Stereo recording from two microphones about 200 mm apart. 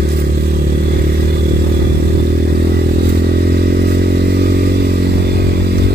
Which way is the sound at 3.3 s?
55° right (ahead or behind).